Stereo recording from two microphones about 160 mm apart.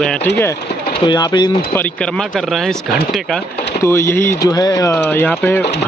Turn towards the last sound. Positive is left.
turn(degrees=10)  # may be behind; listen again after turning